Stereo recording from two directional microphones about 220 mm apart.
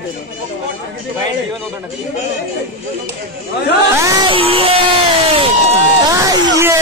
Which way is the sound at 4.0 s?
15° right (ahead or behind).